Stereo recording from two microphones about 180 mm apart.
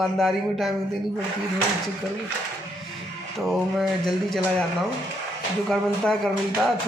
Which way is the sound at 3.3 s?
Centre (ahead or behind).